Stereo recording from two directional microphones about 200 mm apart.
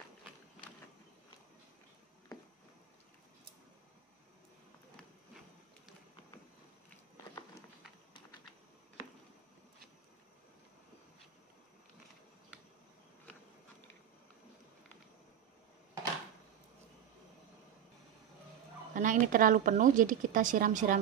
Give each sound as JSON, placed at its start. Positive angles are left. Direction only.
{"t": 18.9, "sound": "a woman's voice", "side_deg": -40}